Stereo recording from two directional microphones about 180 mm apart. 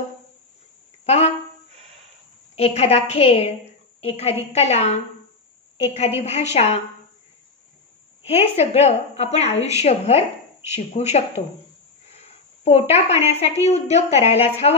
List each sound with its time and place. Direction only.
1.0 s a sound: 35° left (ahead or behind)
2.5 s a woman's voice: 35° left (ahead or behind)
8.3 s a woman's voice: 35° left (ahead or behind)